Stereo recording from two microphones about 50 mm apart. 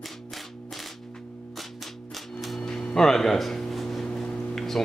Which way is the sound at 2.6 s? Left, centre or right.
Centre.